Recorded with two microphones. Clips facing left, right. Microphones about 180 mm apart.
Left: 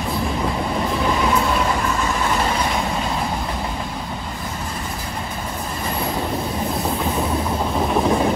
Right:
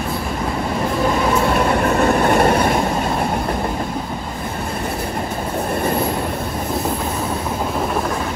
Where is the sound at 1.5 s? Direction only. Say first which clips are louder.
Right 5 dB; 65° right (ahead or behind).